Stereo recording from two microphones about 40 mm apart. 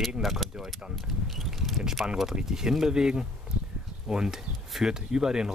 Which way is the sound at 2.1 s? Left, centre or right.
Centre.